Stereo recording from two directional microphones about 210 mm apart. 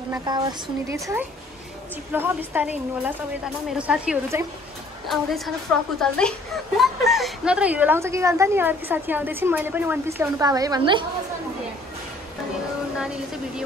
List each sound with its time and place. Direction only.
0.1 s a woman's voice: 20° right (ahead or behind)
3.7 s a woman's voice: 5° right (ahead or behind); by 11.1 s 20° right (ahead or behind)